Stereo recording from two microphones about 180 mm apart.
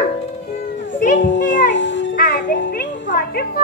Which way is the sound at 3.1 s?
60° left (ahead or behind).